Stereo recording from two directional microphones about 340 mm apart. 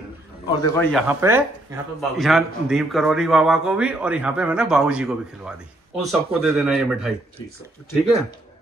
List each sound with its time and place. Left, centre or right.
0.6 s a man's voice: centre
1.0 s a man's voice: centre